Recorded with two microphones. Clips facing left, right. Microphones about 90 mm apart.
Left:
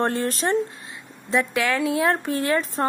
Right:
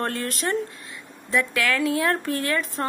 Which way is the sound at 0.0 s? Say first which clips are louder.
Left 4 dB; 25° left (ahead or behind).